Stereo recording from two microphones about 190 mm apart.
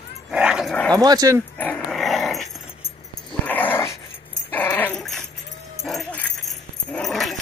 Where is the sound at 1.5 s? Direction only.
5° left (ahead or behind).